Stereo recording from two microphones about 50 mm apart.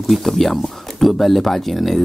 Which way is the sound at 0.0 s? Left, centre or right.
Centre.